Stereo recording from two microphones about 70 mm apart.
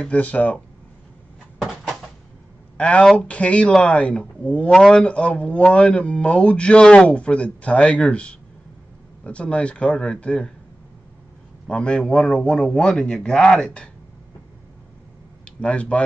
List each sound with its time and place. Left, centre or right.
0.0 s speech: left
2.8 s speech: centre
4.7 s speech: centre
5.0 s speech: centre
11.6 s speech: centre
15.4 s speech: centre